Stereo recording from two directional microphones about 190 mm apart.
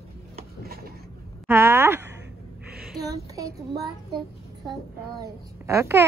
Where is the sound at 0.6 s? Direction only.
55° right (ahead or behind).